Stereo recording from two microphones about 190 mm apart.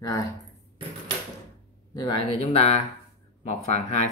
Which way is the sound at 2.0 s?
25° left (ahead or behind).